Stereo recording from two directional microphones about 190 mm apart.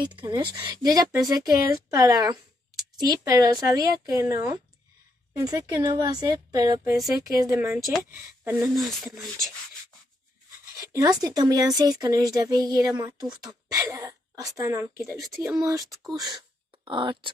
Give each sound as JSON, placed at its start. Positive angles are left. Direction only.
{"t": 0.0, "sound": "a woman's voice", "side_deg": -25}
{"t": 8.7, "sound": "speech", "side_deg": 0}
{"t": 10.8, "sound": "a woman's voice", "side_deg": -15}
{"t": 15.9, "sound": "speech", "side_deg": 0}
{"t": 16.2, "sound": "a sound", "side_deg": -25}